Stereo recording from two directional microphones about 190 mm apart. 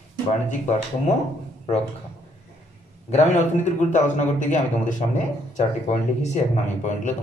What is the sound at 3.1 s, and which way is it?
A man's voice, 35° left (ahead or behind).